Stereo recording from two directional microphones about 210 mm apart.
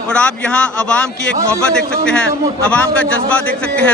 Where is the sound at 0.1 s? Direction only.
5° left (ahead or behind).